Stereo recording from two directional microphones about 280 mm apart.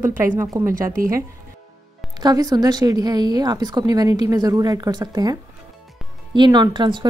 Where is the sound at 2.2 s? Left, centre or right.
Centre.